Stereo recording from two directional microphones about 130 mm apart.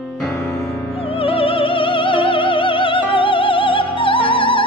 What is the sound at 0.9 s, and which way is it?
Opera, 45° left (ahead or behind).